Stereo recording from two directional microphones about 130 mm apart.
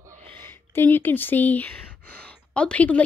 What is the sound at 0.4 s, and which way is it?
Speech, 15° left (ahead or behind).